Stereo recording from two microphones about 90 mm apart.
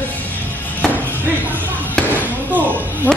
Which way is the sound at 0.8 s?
10° left (ahead or behind).